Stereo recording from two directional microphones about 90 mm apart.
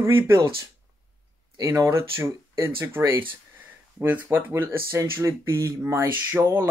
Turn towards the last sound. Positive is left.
turn(degrees=-25)  # may be behind; listen again after turning